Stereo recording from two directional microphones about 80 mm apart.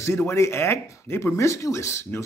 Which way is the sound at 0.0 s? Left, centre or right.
Left.